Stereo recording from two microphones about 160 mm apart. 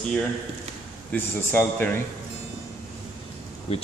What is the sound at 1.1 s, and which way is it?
Speech, 10° left (ahead or behind).